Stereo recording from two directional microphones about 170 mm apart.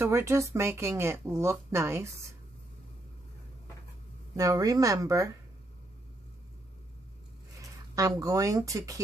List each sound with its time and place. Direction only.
0.0 s speech: 15° right (ahead or behind)
4.4 s speech: 20° right (ahead or behind)
7.9 s speech: 20° right (ahead or behind)